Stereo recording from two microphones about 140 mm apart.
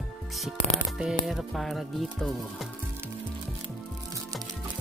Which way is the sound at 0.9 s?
5° right (ahead or behind).